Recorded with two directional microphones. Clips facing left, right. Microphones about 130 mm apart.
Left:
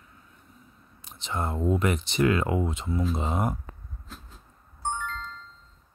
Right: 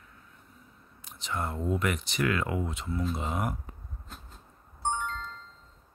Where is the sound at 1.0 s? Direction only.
25° left (ahead or behind).